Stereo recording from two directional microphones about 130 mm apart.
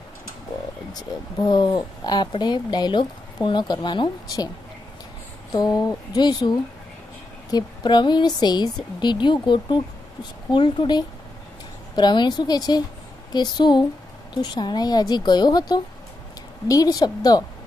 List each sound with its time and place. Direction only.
1.4 s speech: 30° left (ahead or behind)
5.5 s speech: 30° left (ahead or behind)
7.5 s a woman's voice: 35° left (ahead or behind)